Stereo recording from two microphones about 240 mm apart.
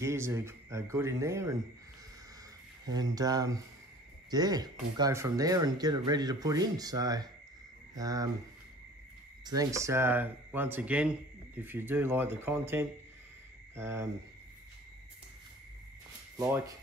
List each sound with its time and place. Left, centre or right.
0.0 s speech: centre
2.9 s speech: centre
9.4 s speech: centre
16.3 s speech: centre